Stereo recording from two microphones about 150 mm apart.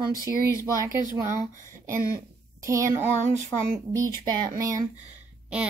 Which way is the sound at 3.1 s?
50° right (ahead or behind).